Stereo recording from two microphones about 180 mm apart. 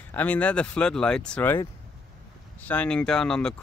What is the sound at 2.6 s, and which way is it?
Speech, 10° left (ahead or behind).